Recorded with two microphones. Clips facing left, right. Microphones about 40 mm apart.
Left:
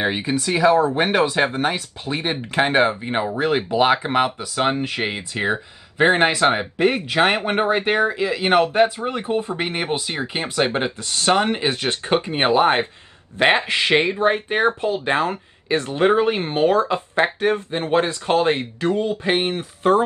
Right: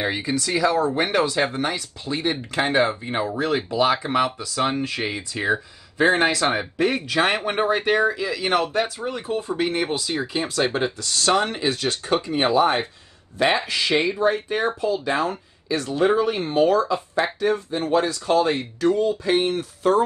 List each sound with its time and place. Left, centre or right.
0.0 s speech: left